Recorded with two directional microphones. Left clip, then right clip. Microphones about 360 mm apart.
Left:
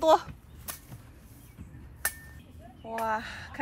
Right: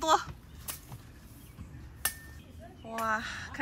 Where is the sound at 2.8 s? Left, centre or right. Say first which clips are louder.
Left 1 dB; centre.